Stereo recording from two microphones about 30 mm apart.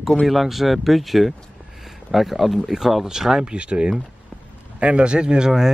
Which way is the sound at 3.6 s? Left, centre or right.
Right.